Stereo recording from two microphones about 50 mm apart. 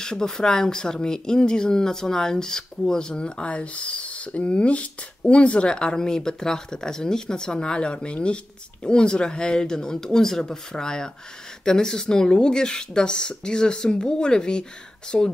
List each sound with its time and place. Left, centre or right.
0.0 s speech: centre